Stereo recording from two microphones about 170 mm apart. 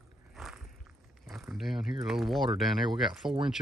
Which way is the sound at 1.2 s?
Centre (ahead or behind).